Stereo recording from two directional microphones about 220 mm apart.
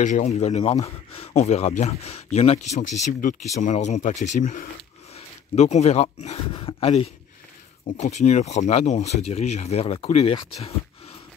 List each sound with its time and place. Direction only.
0.0 s speech: 35° left (ahead or behind)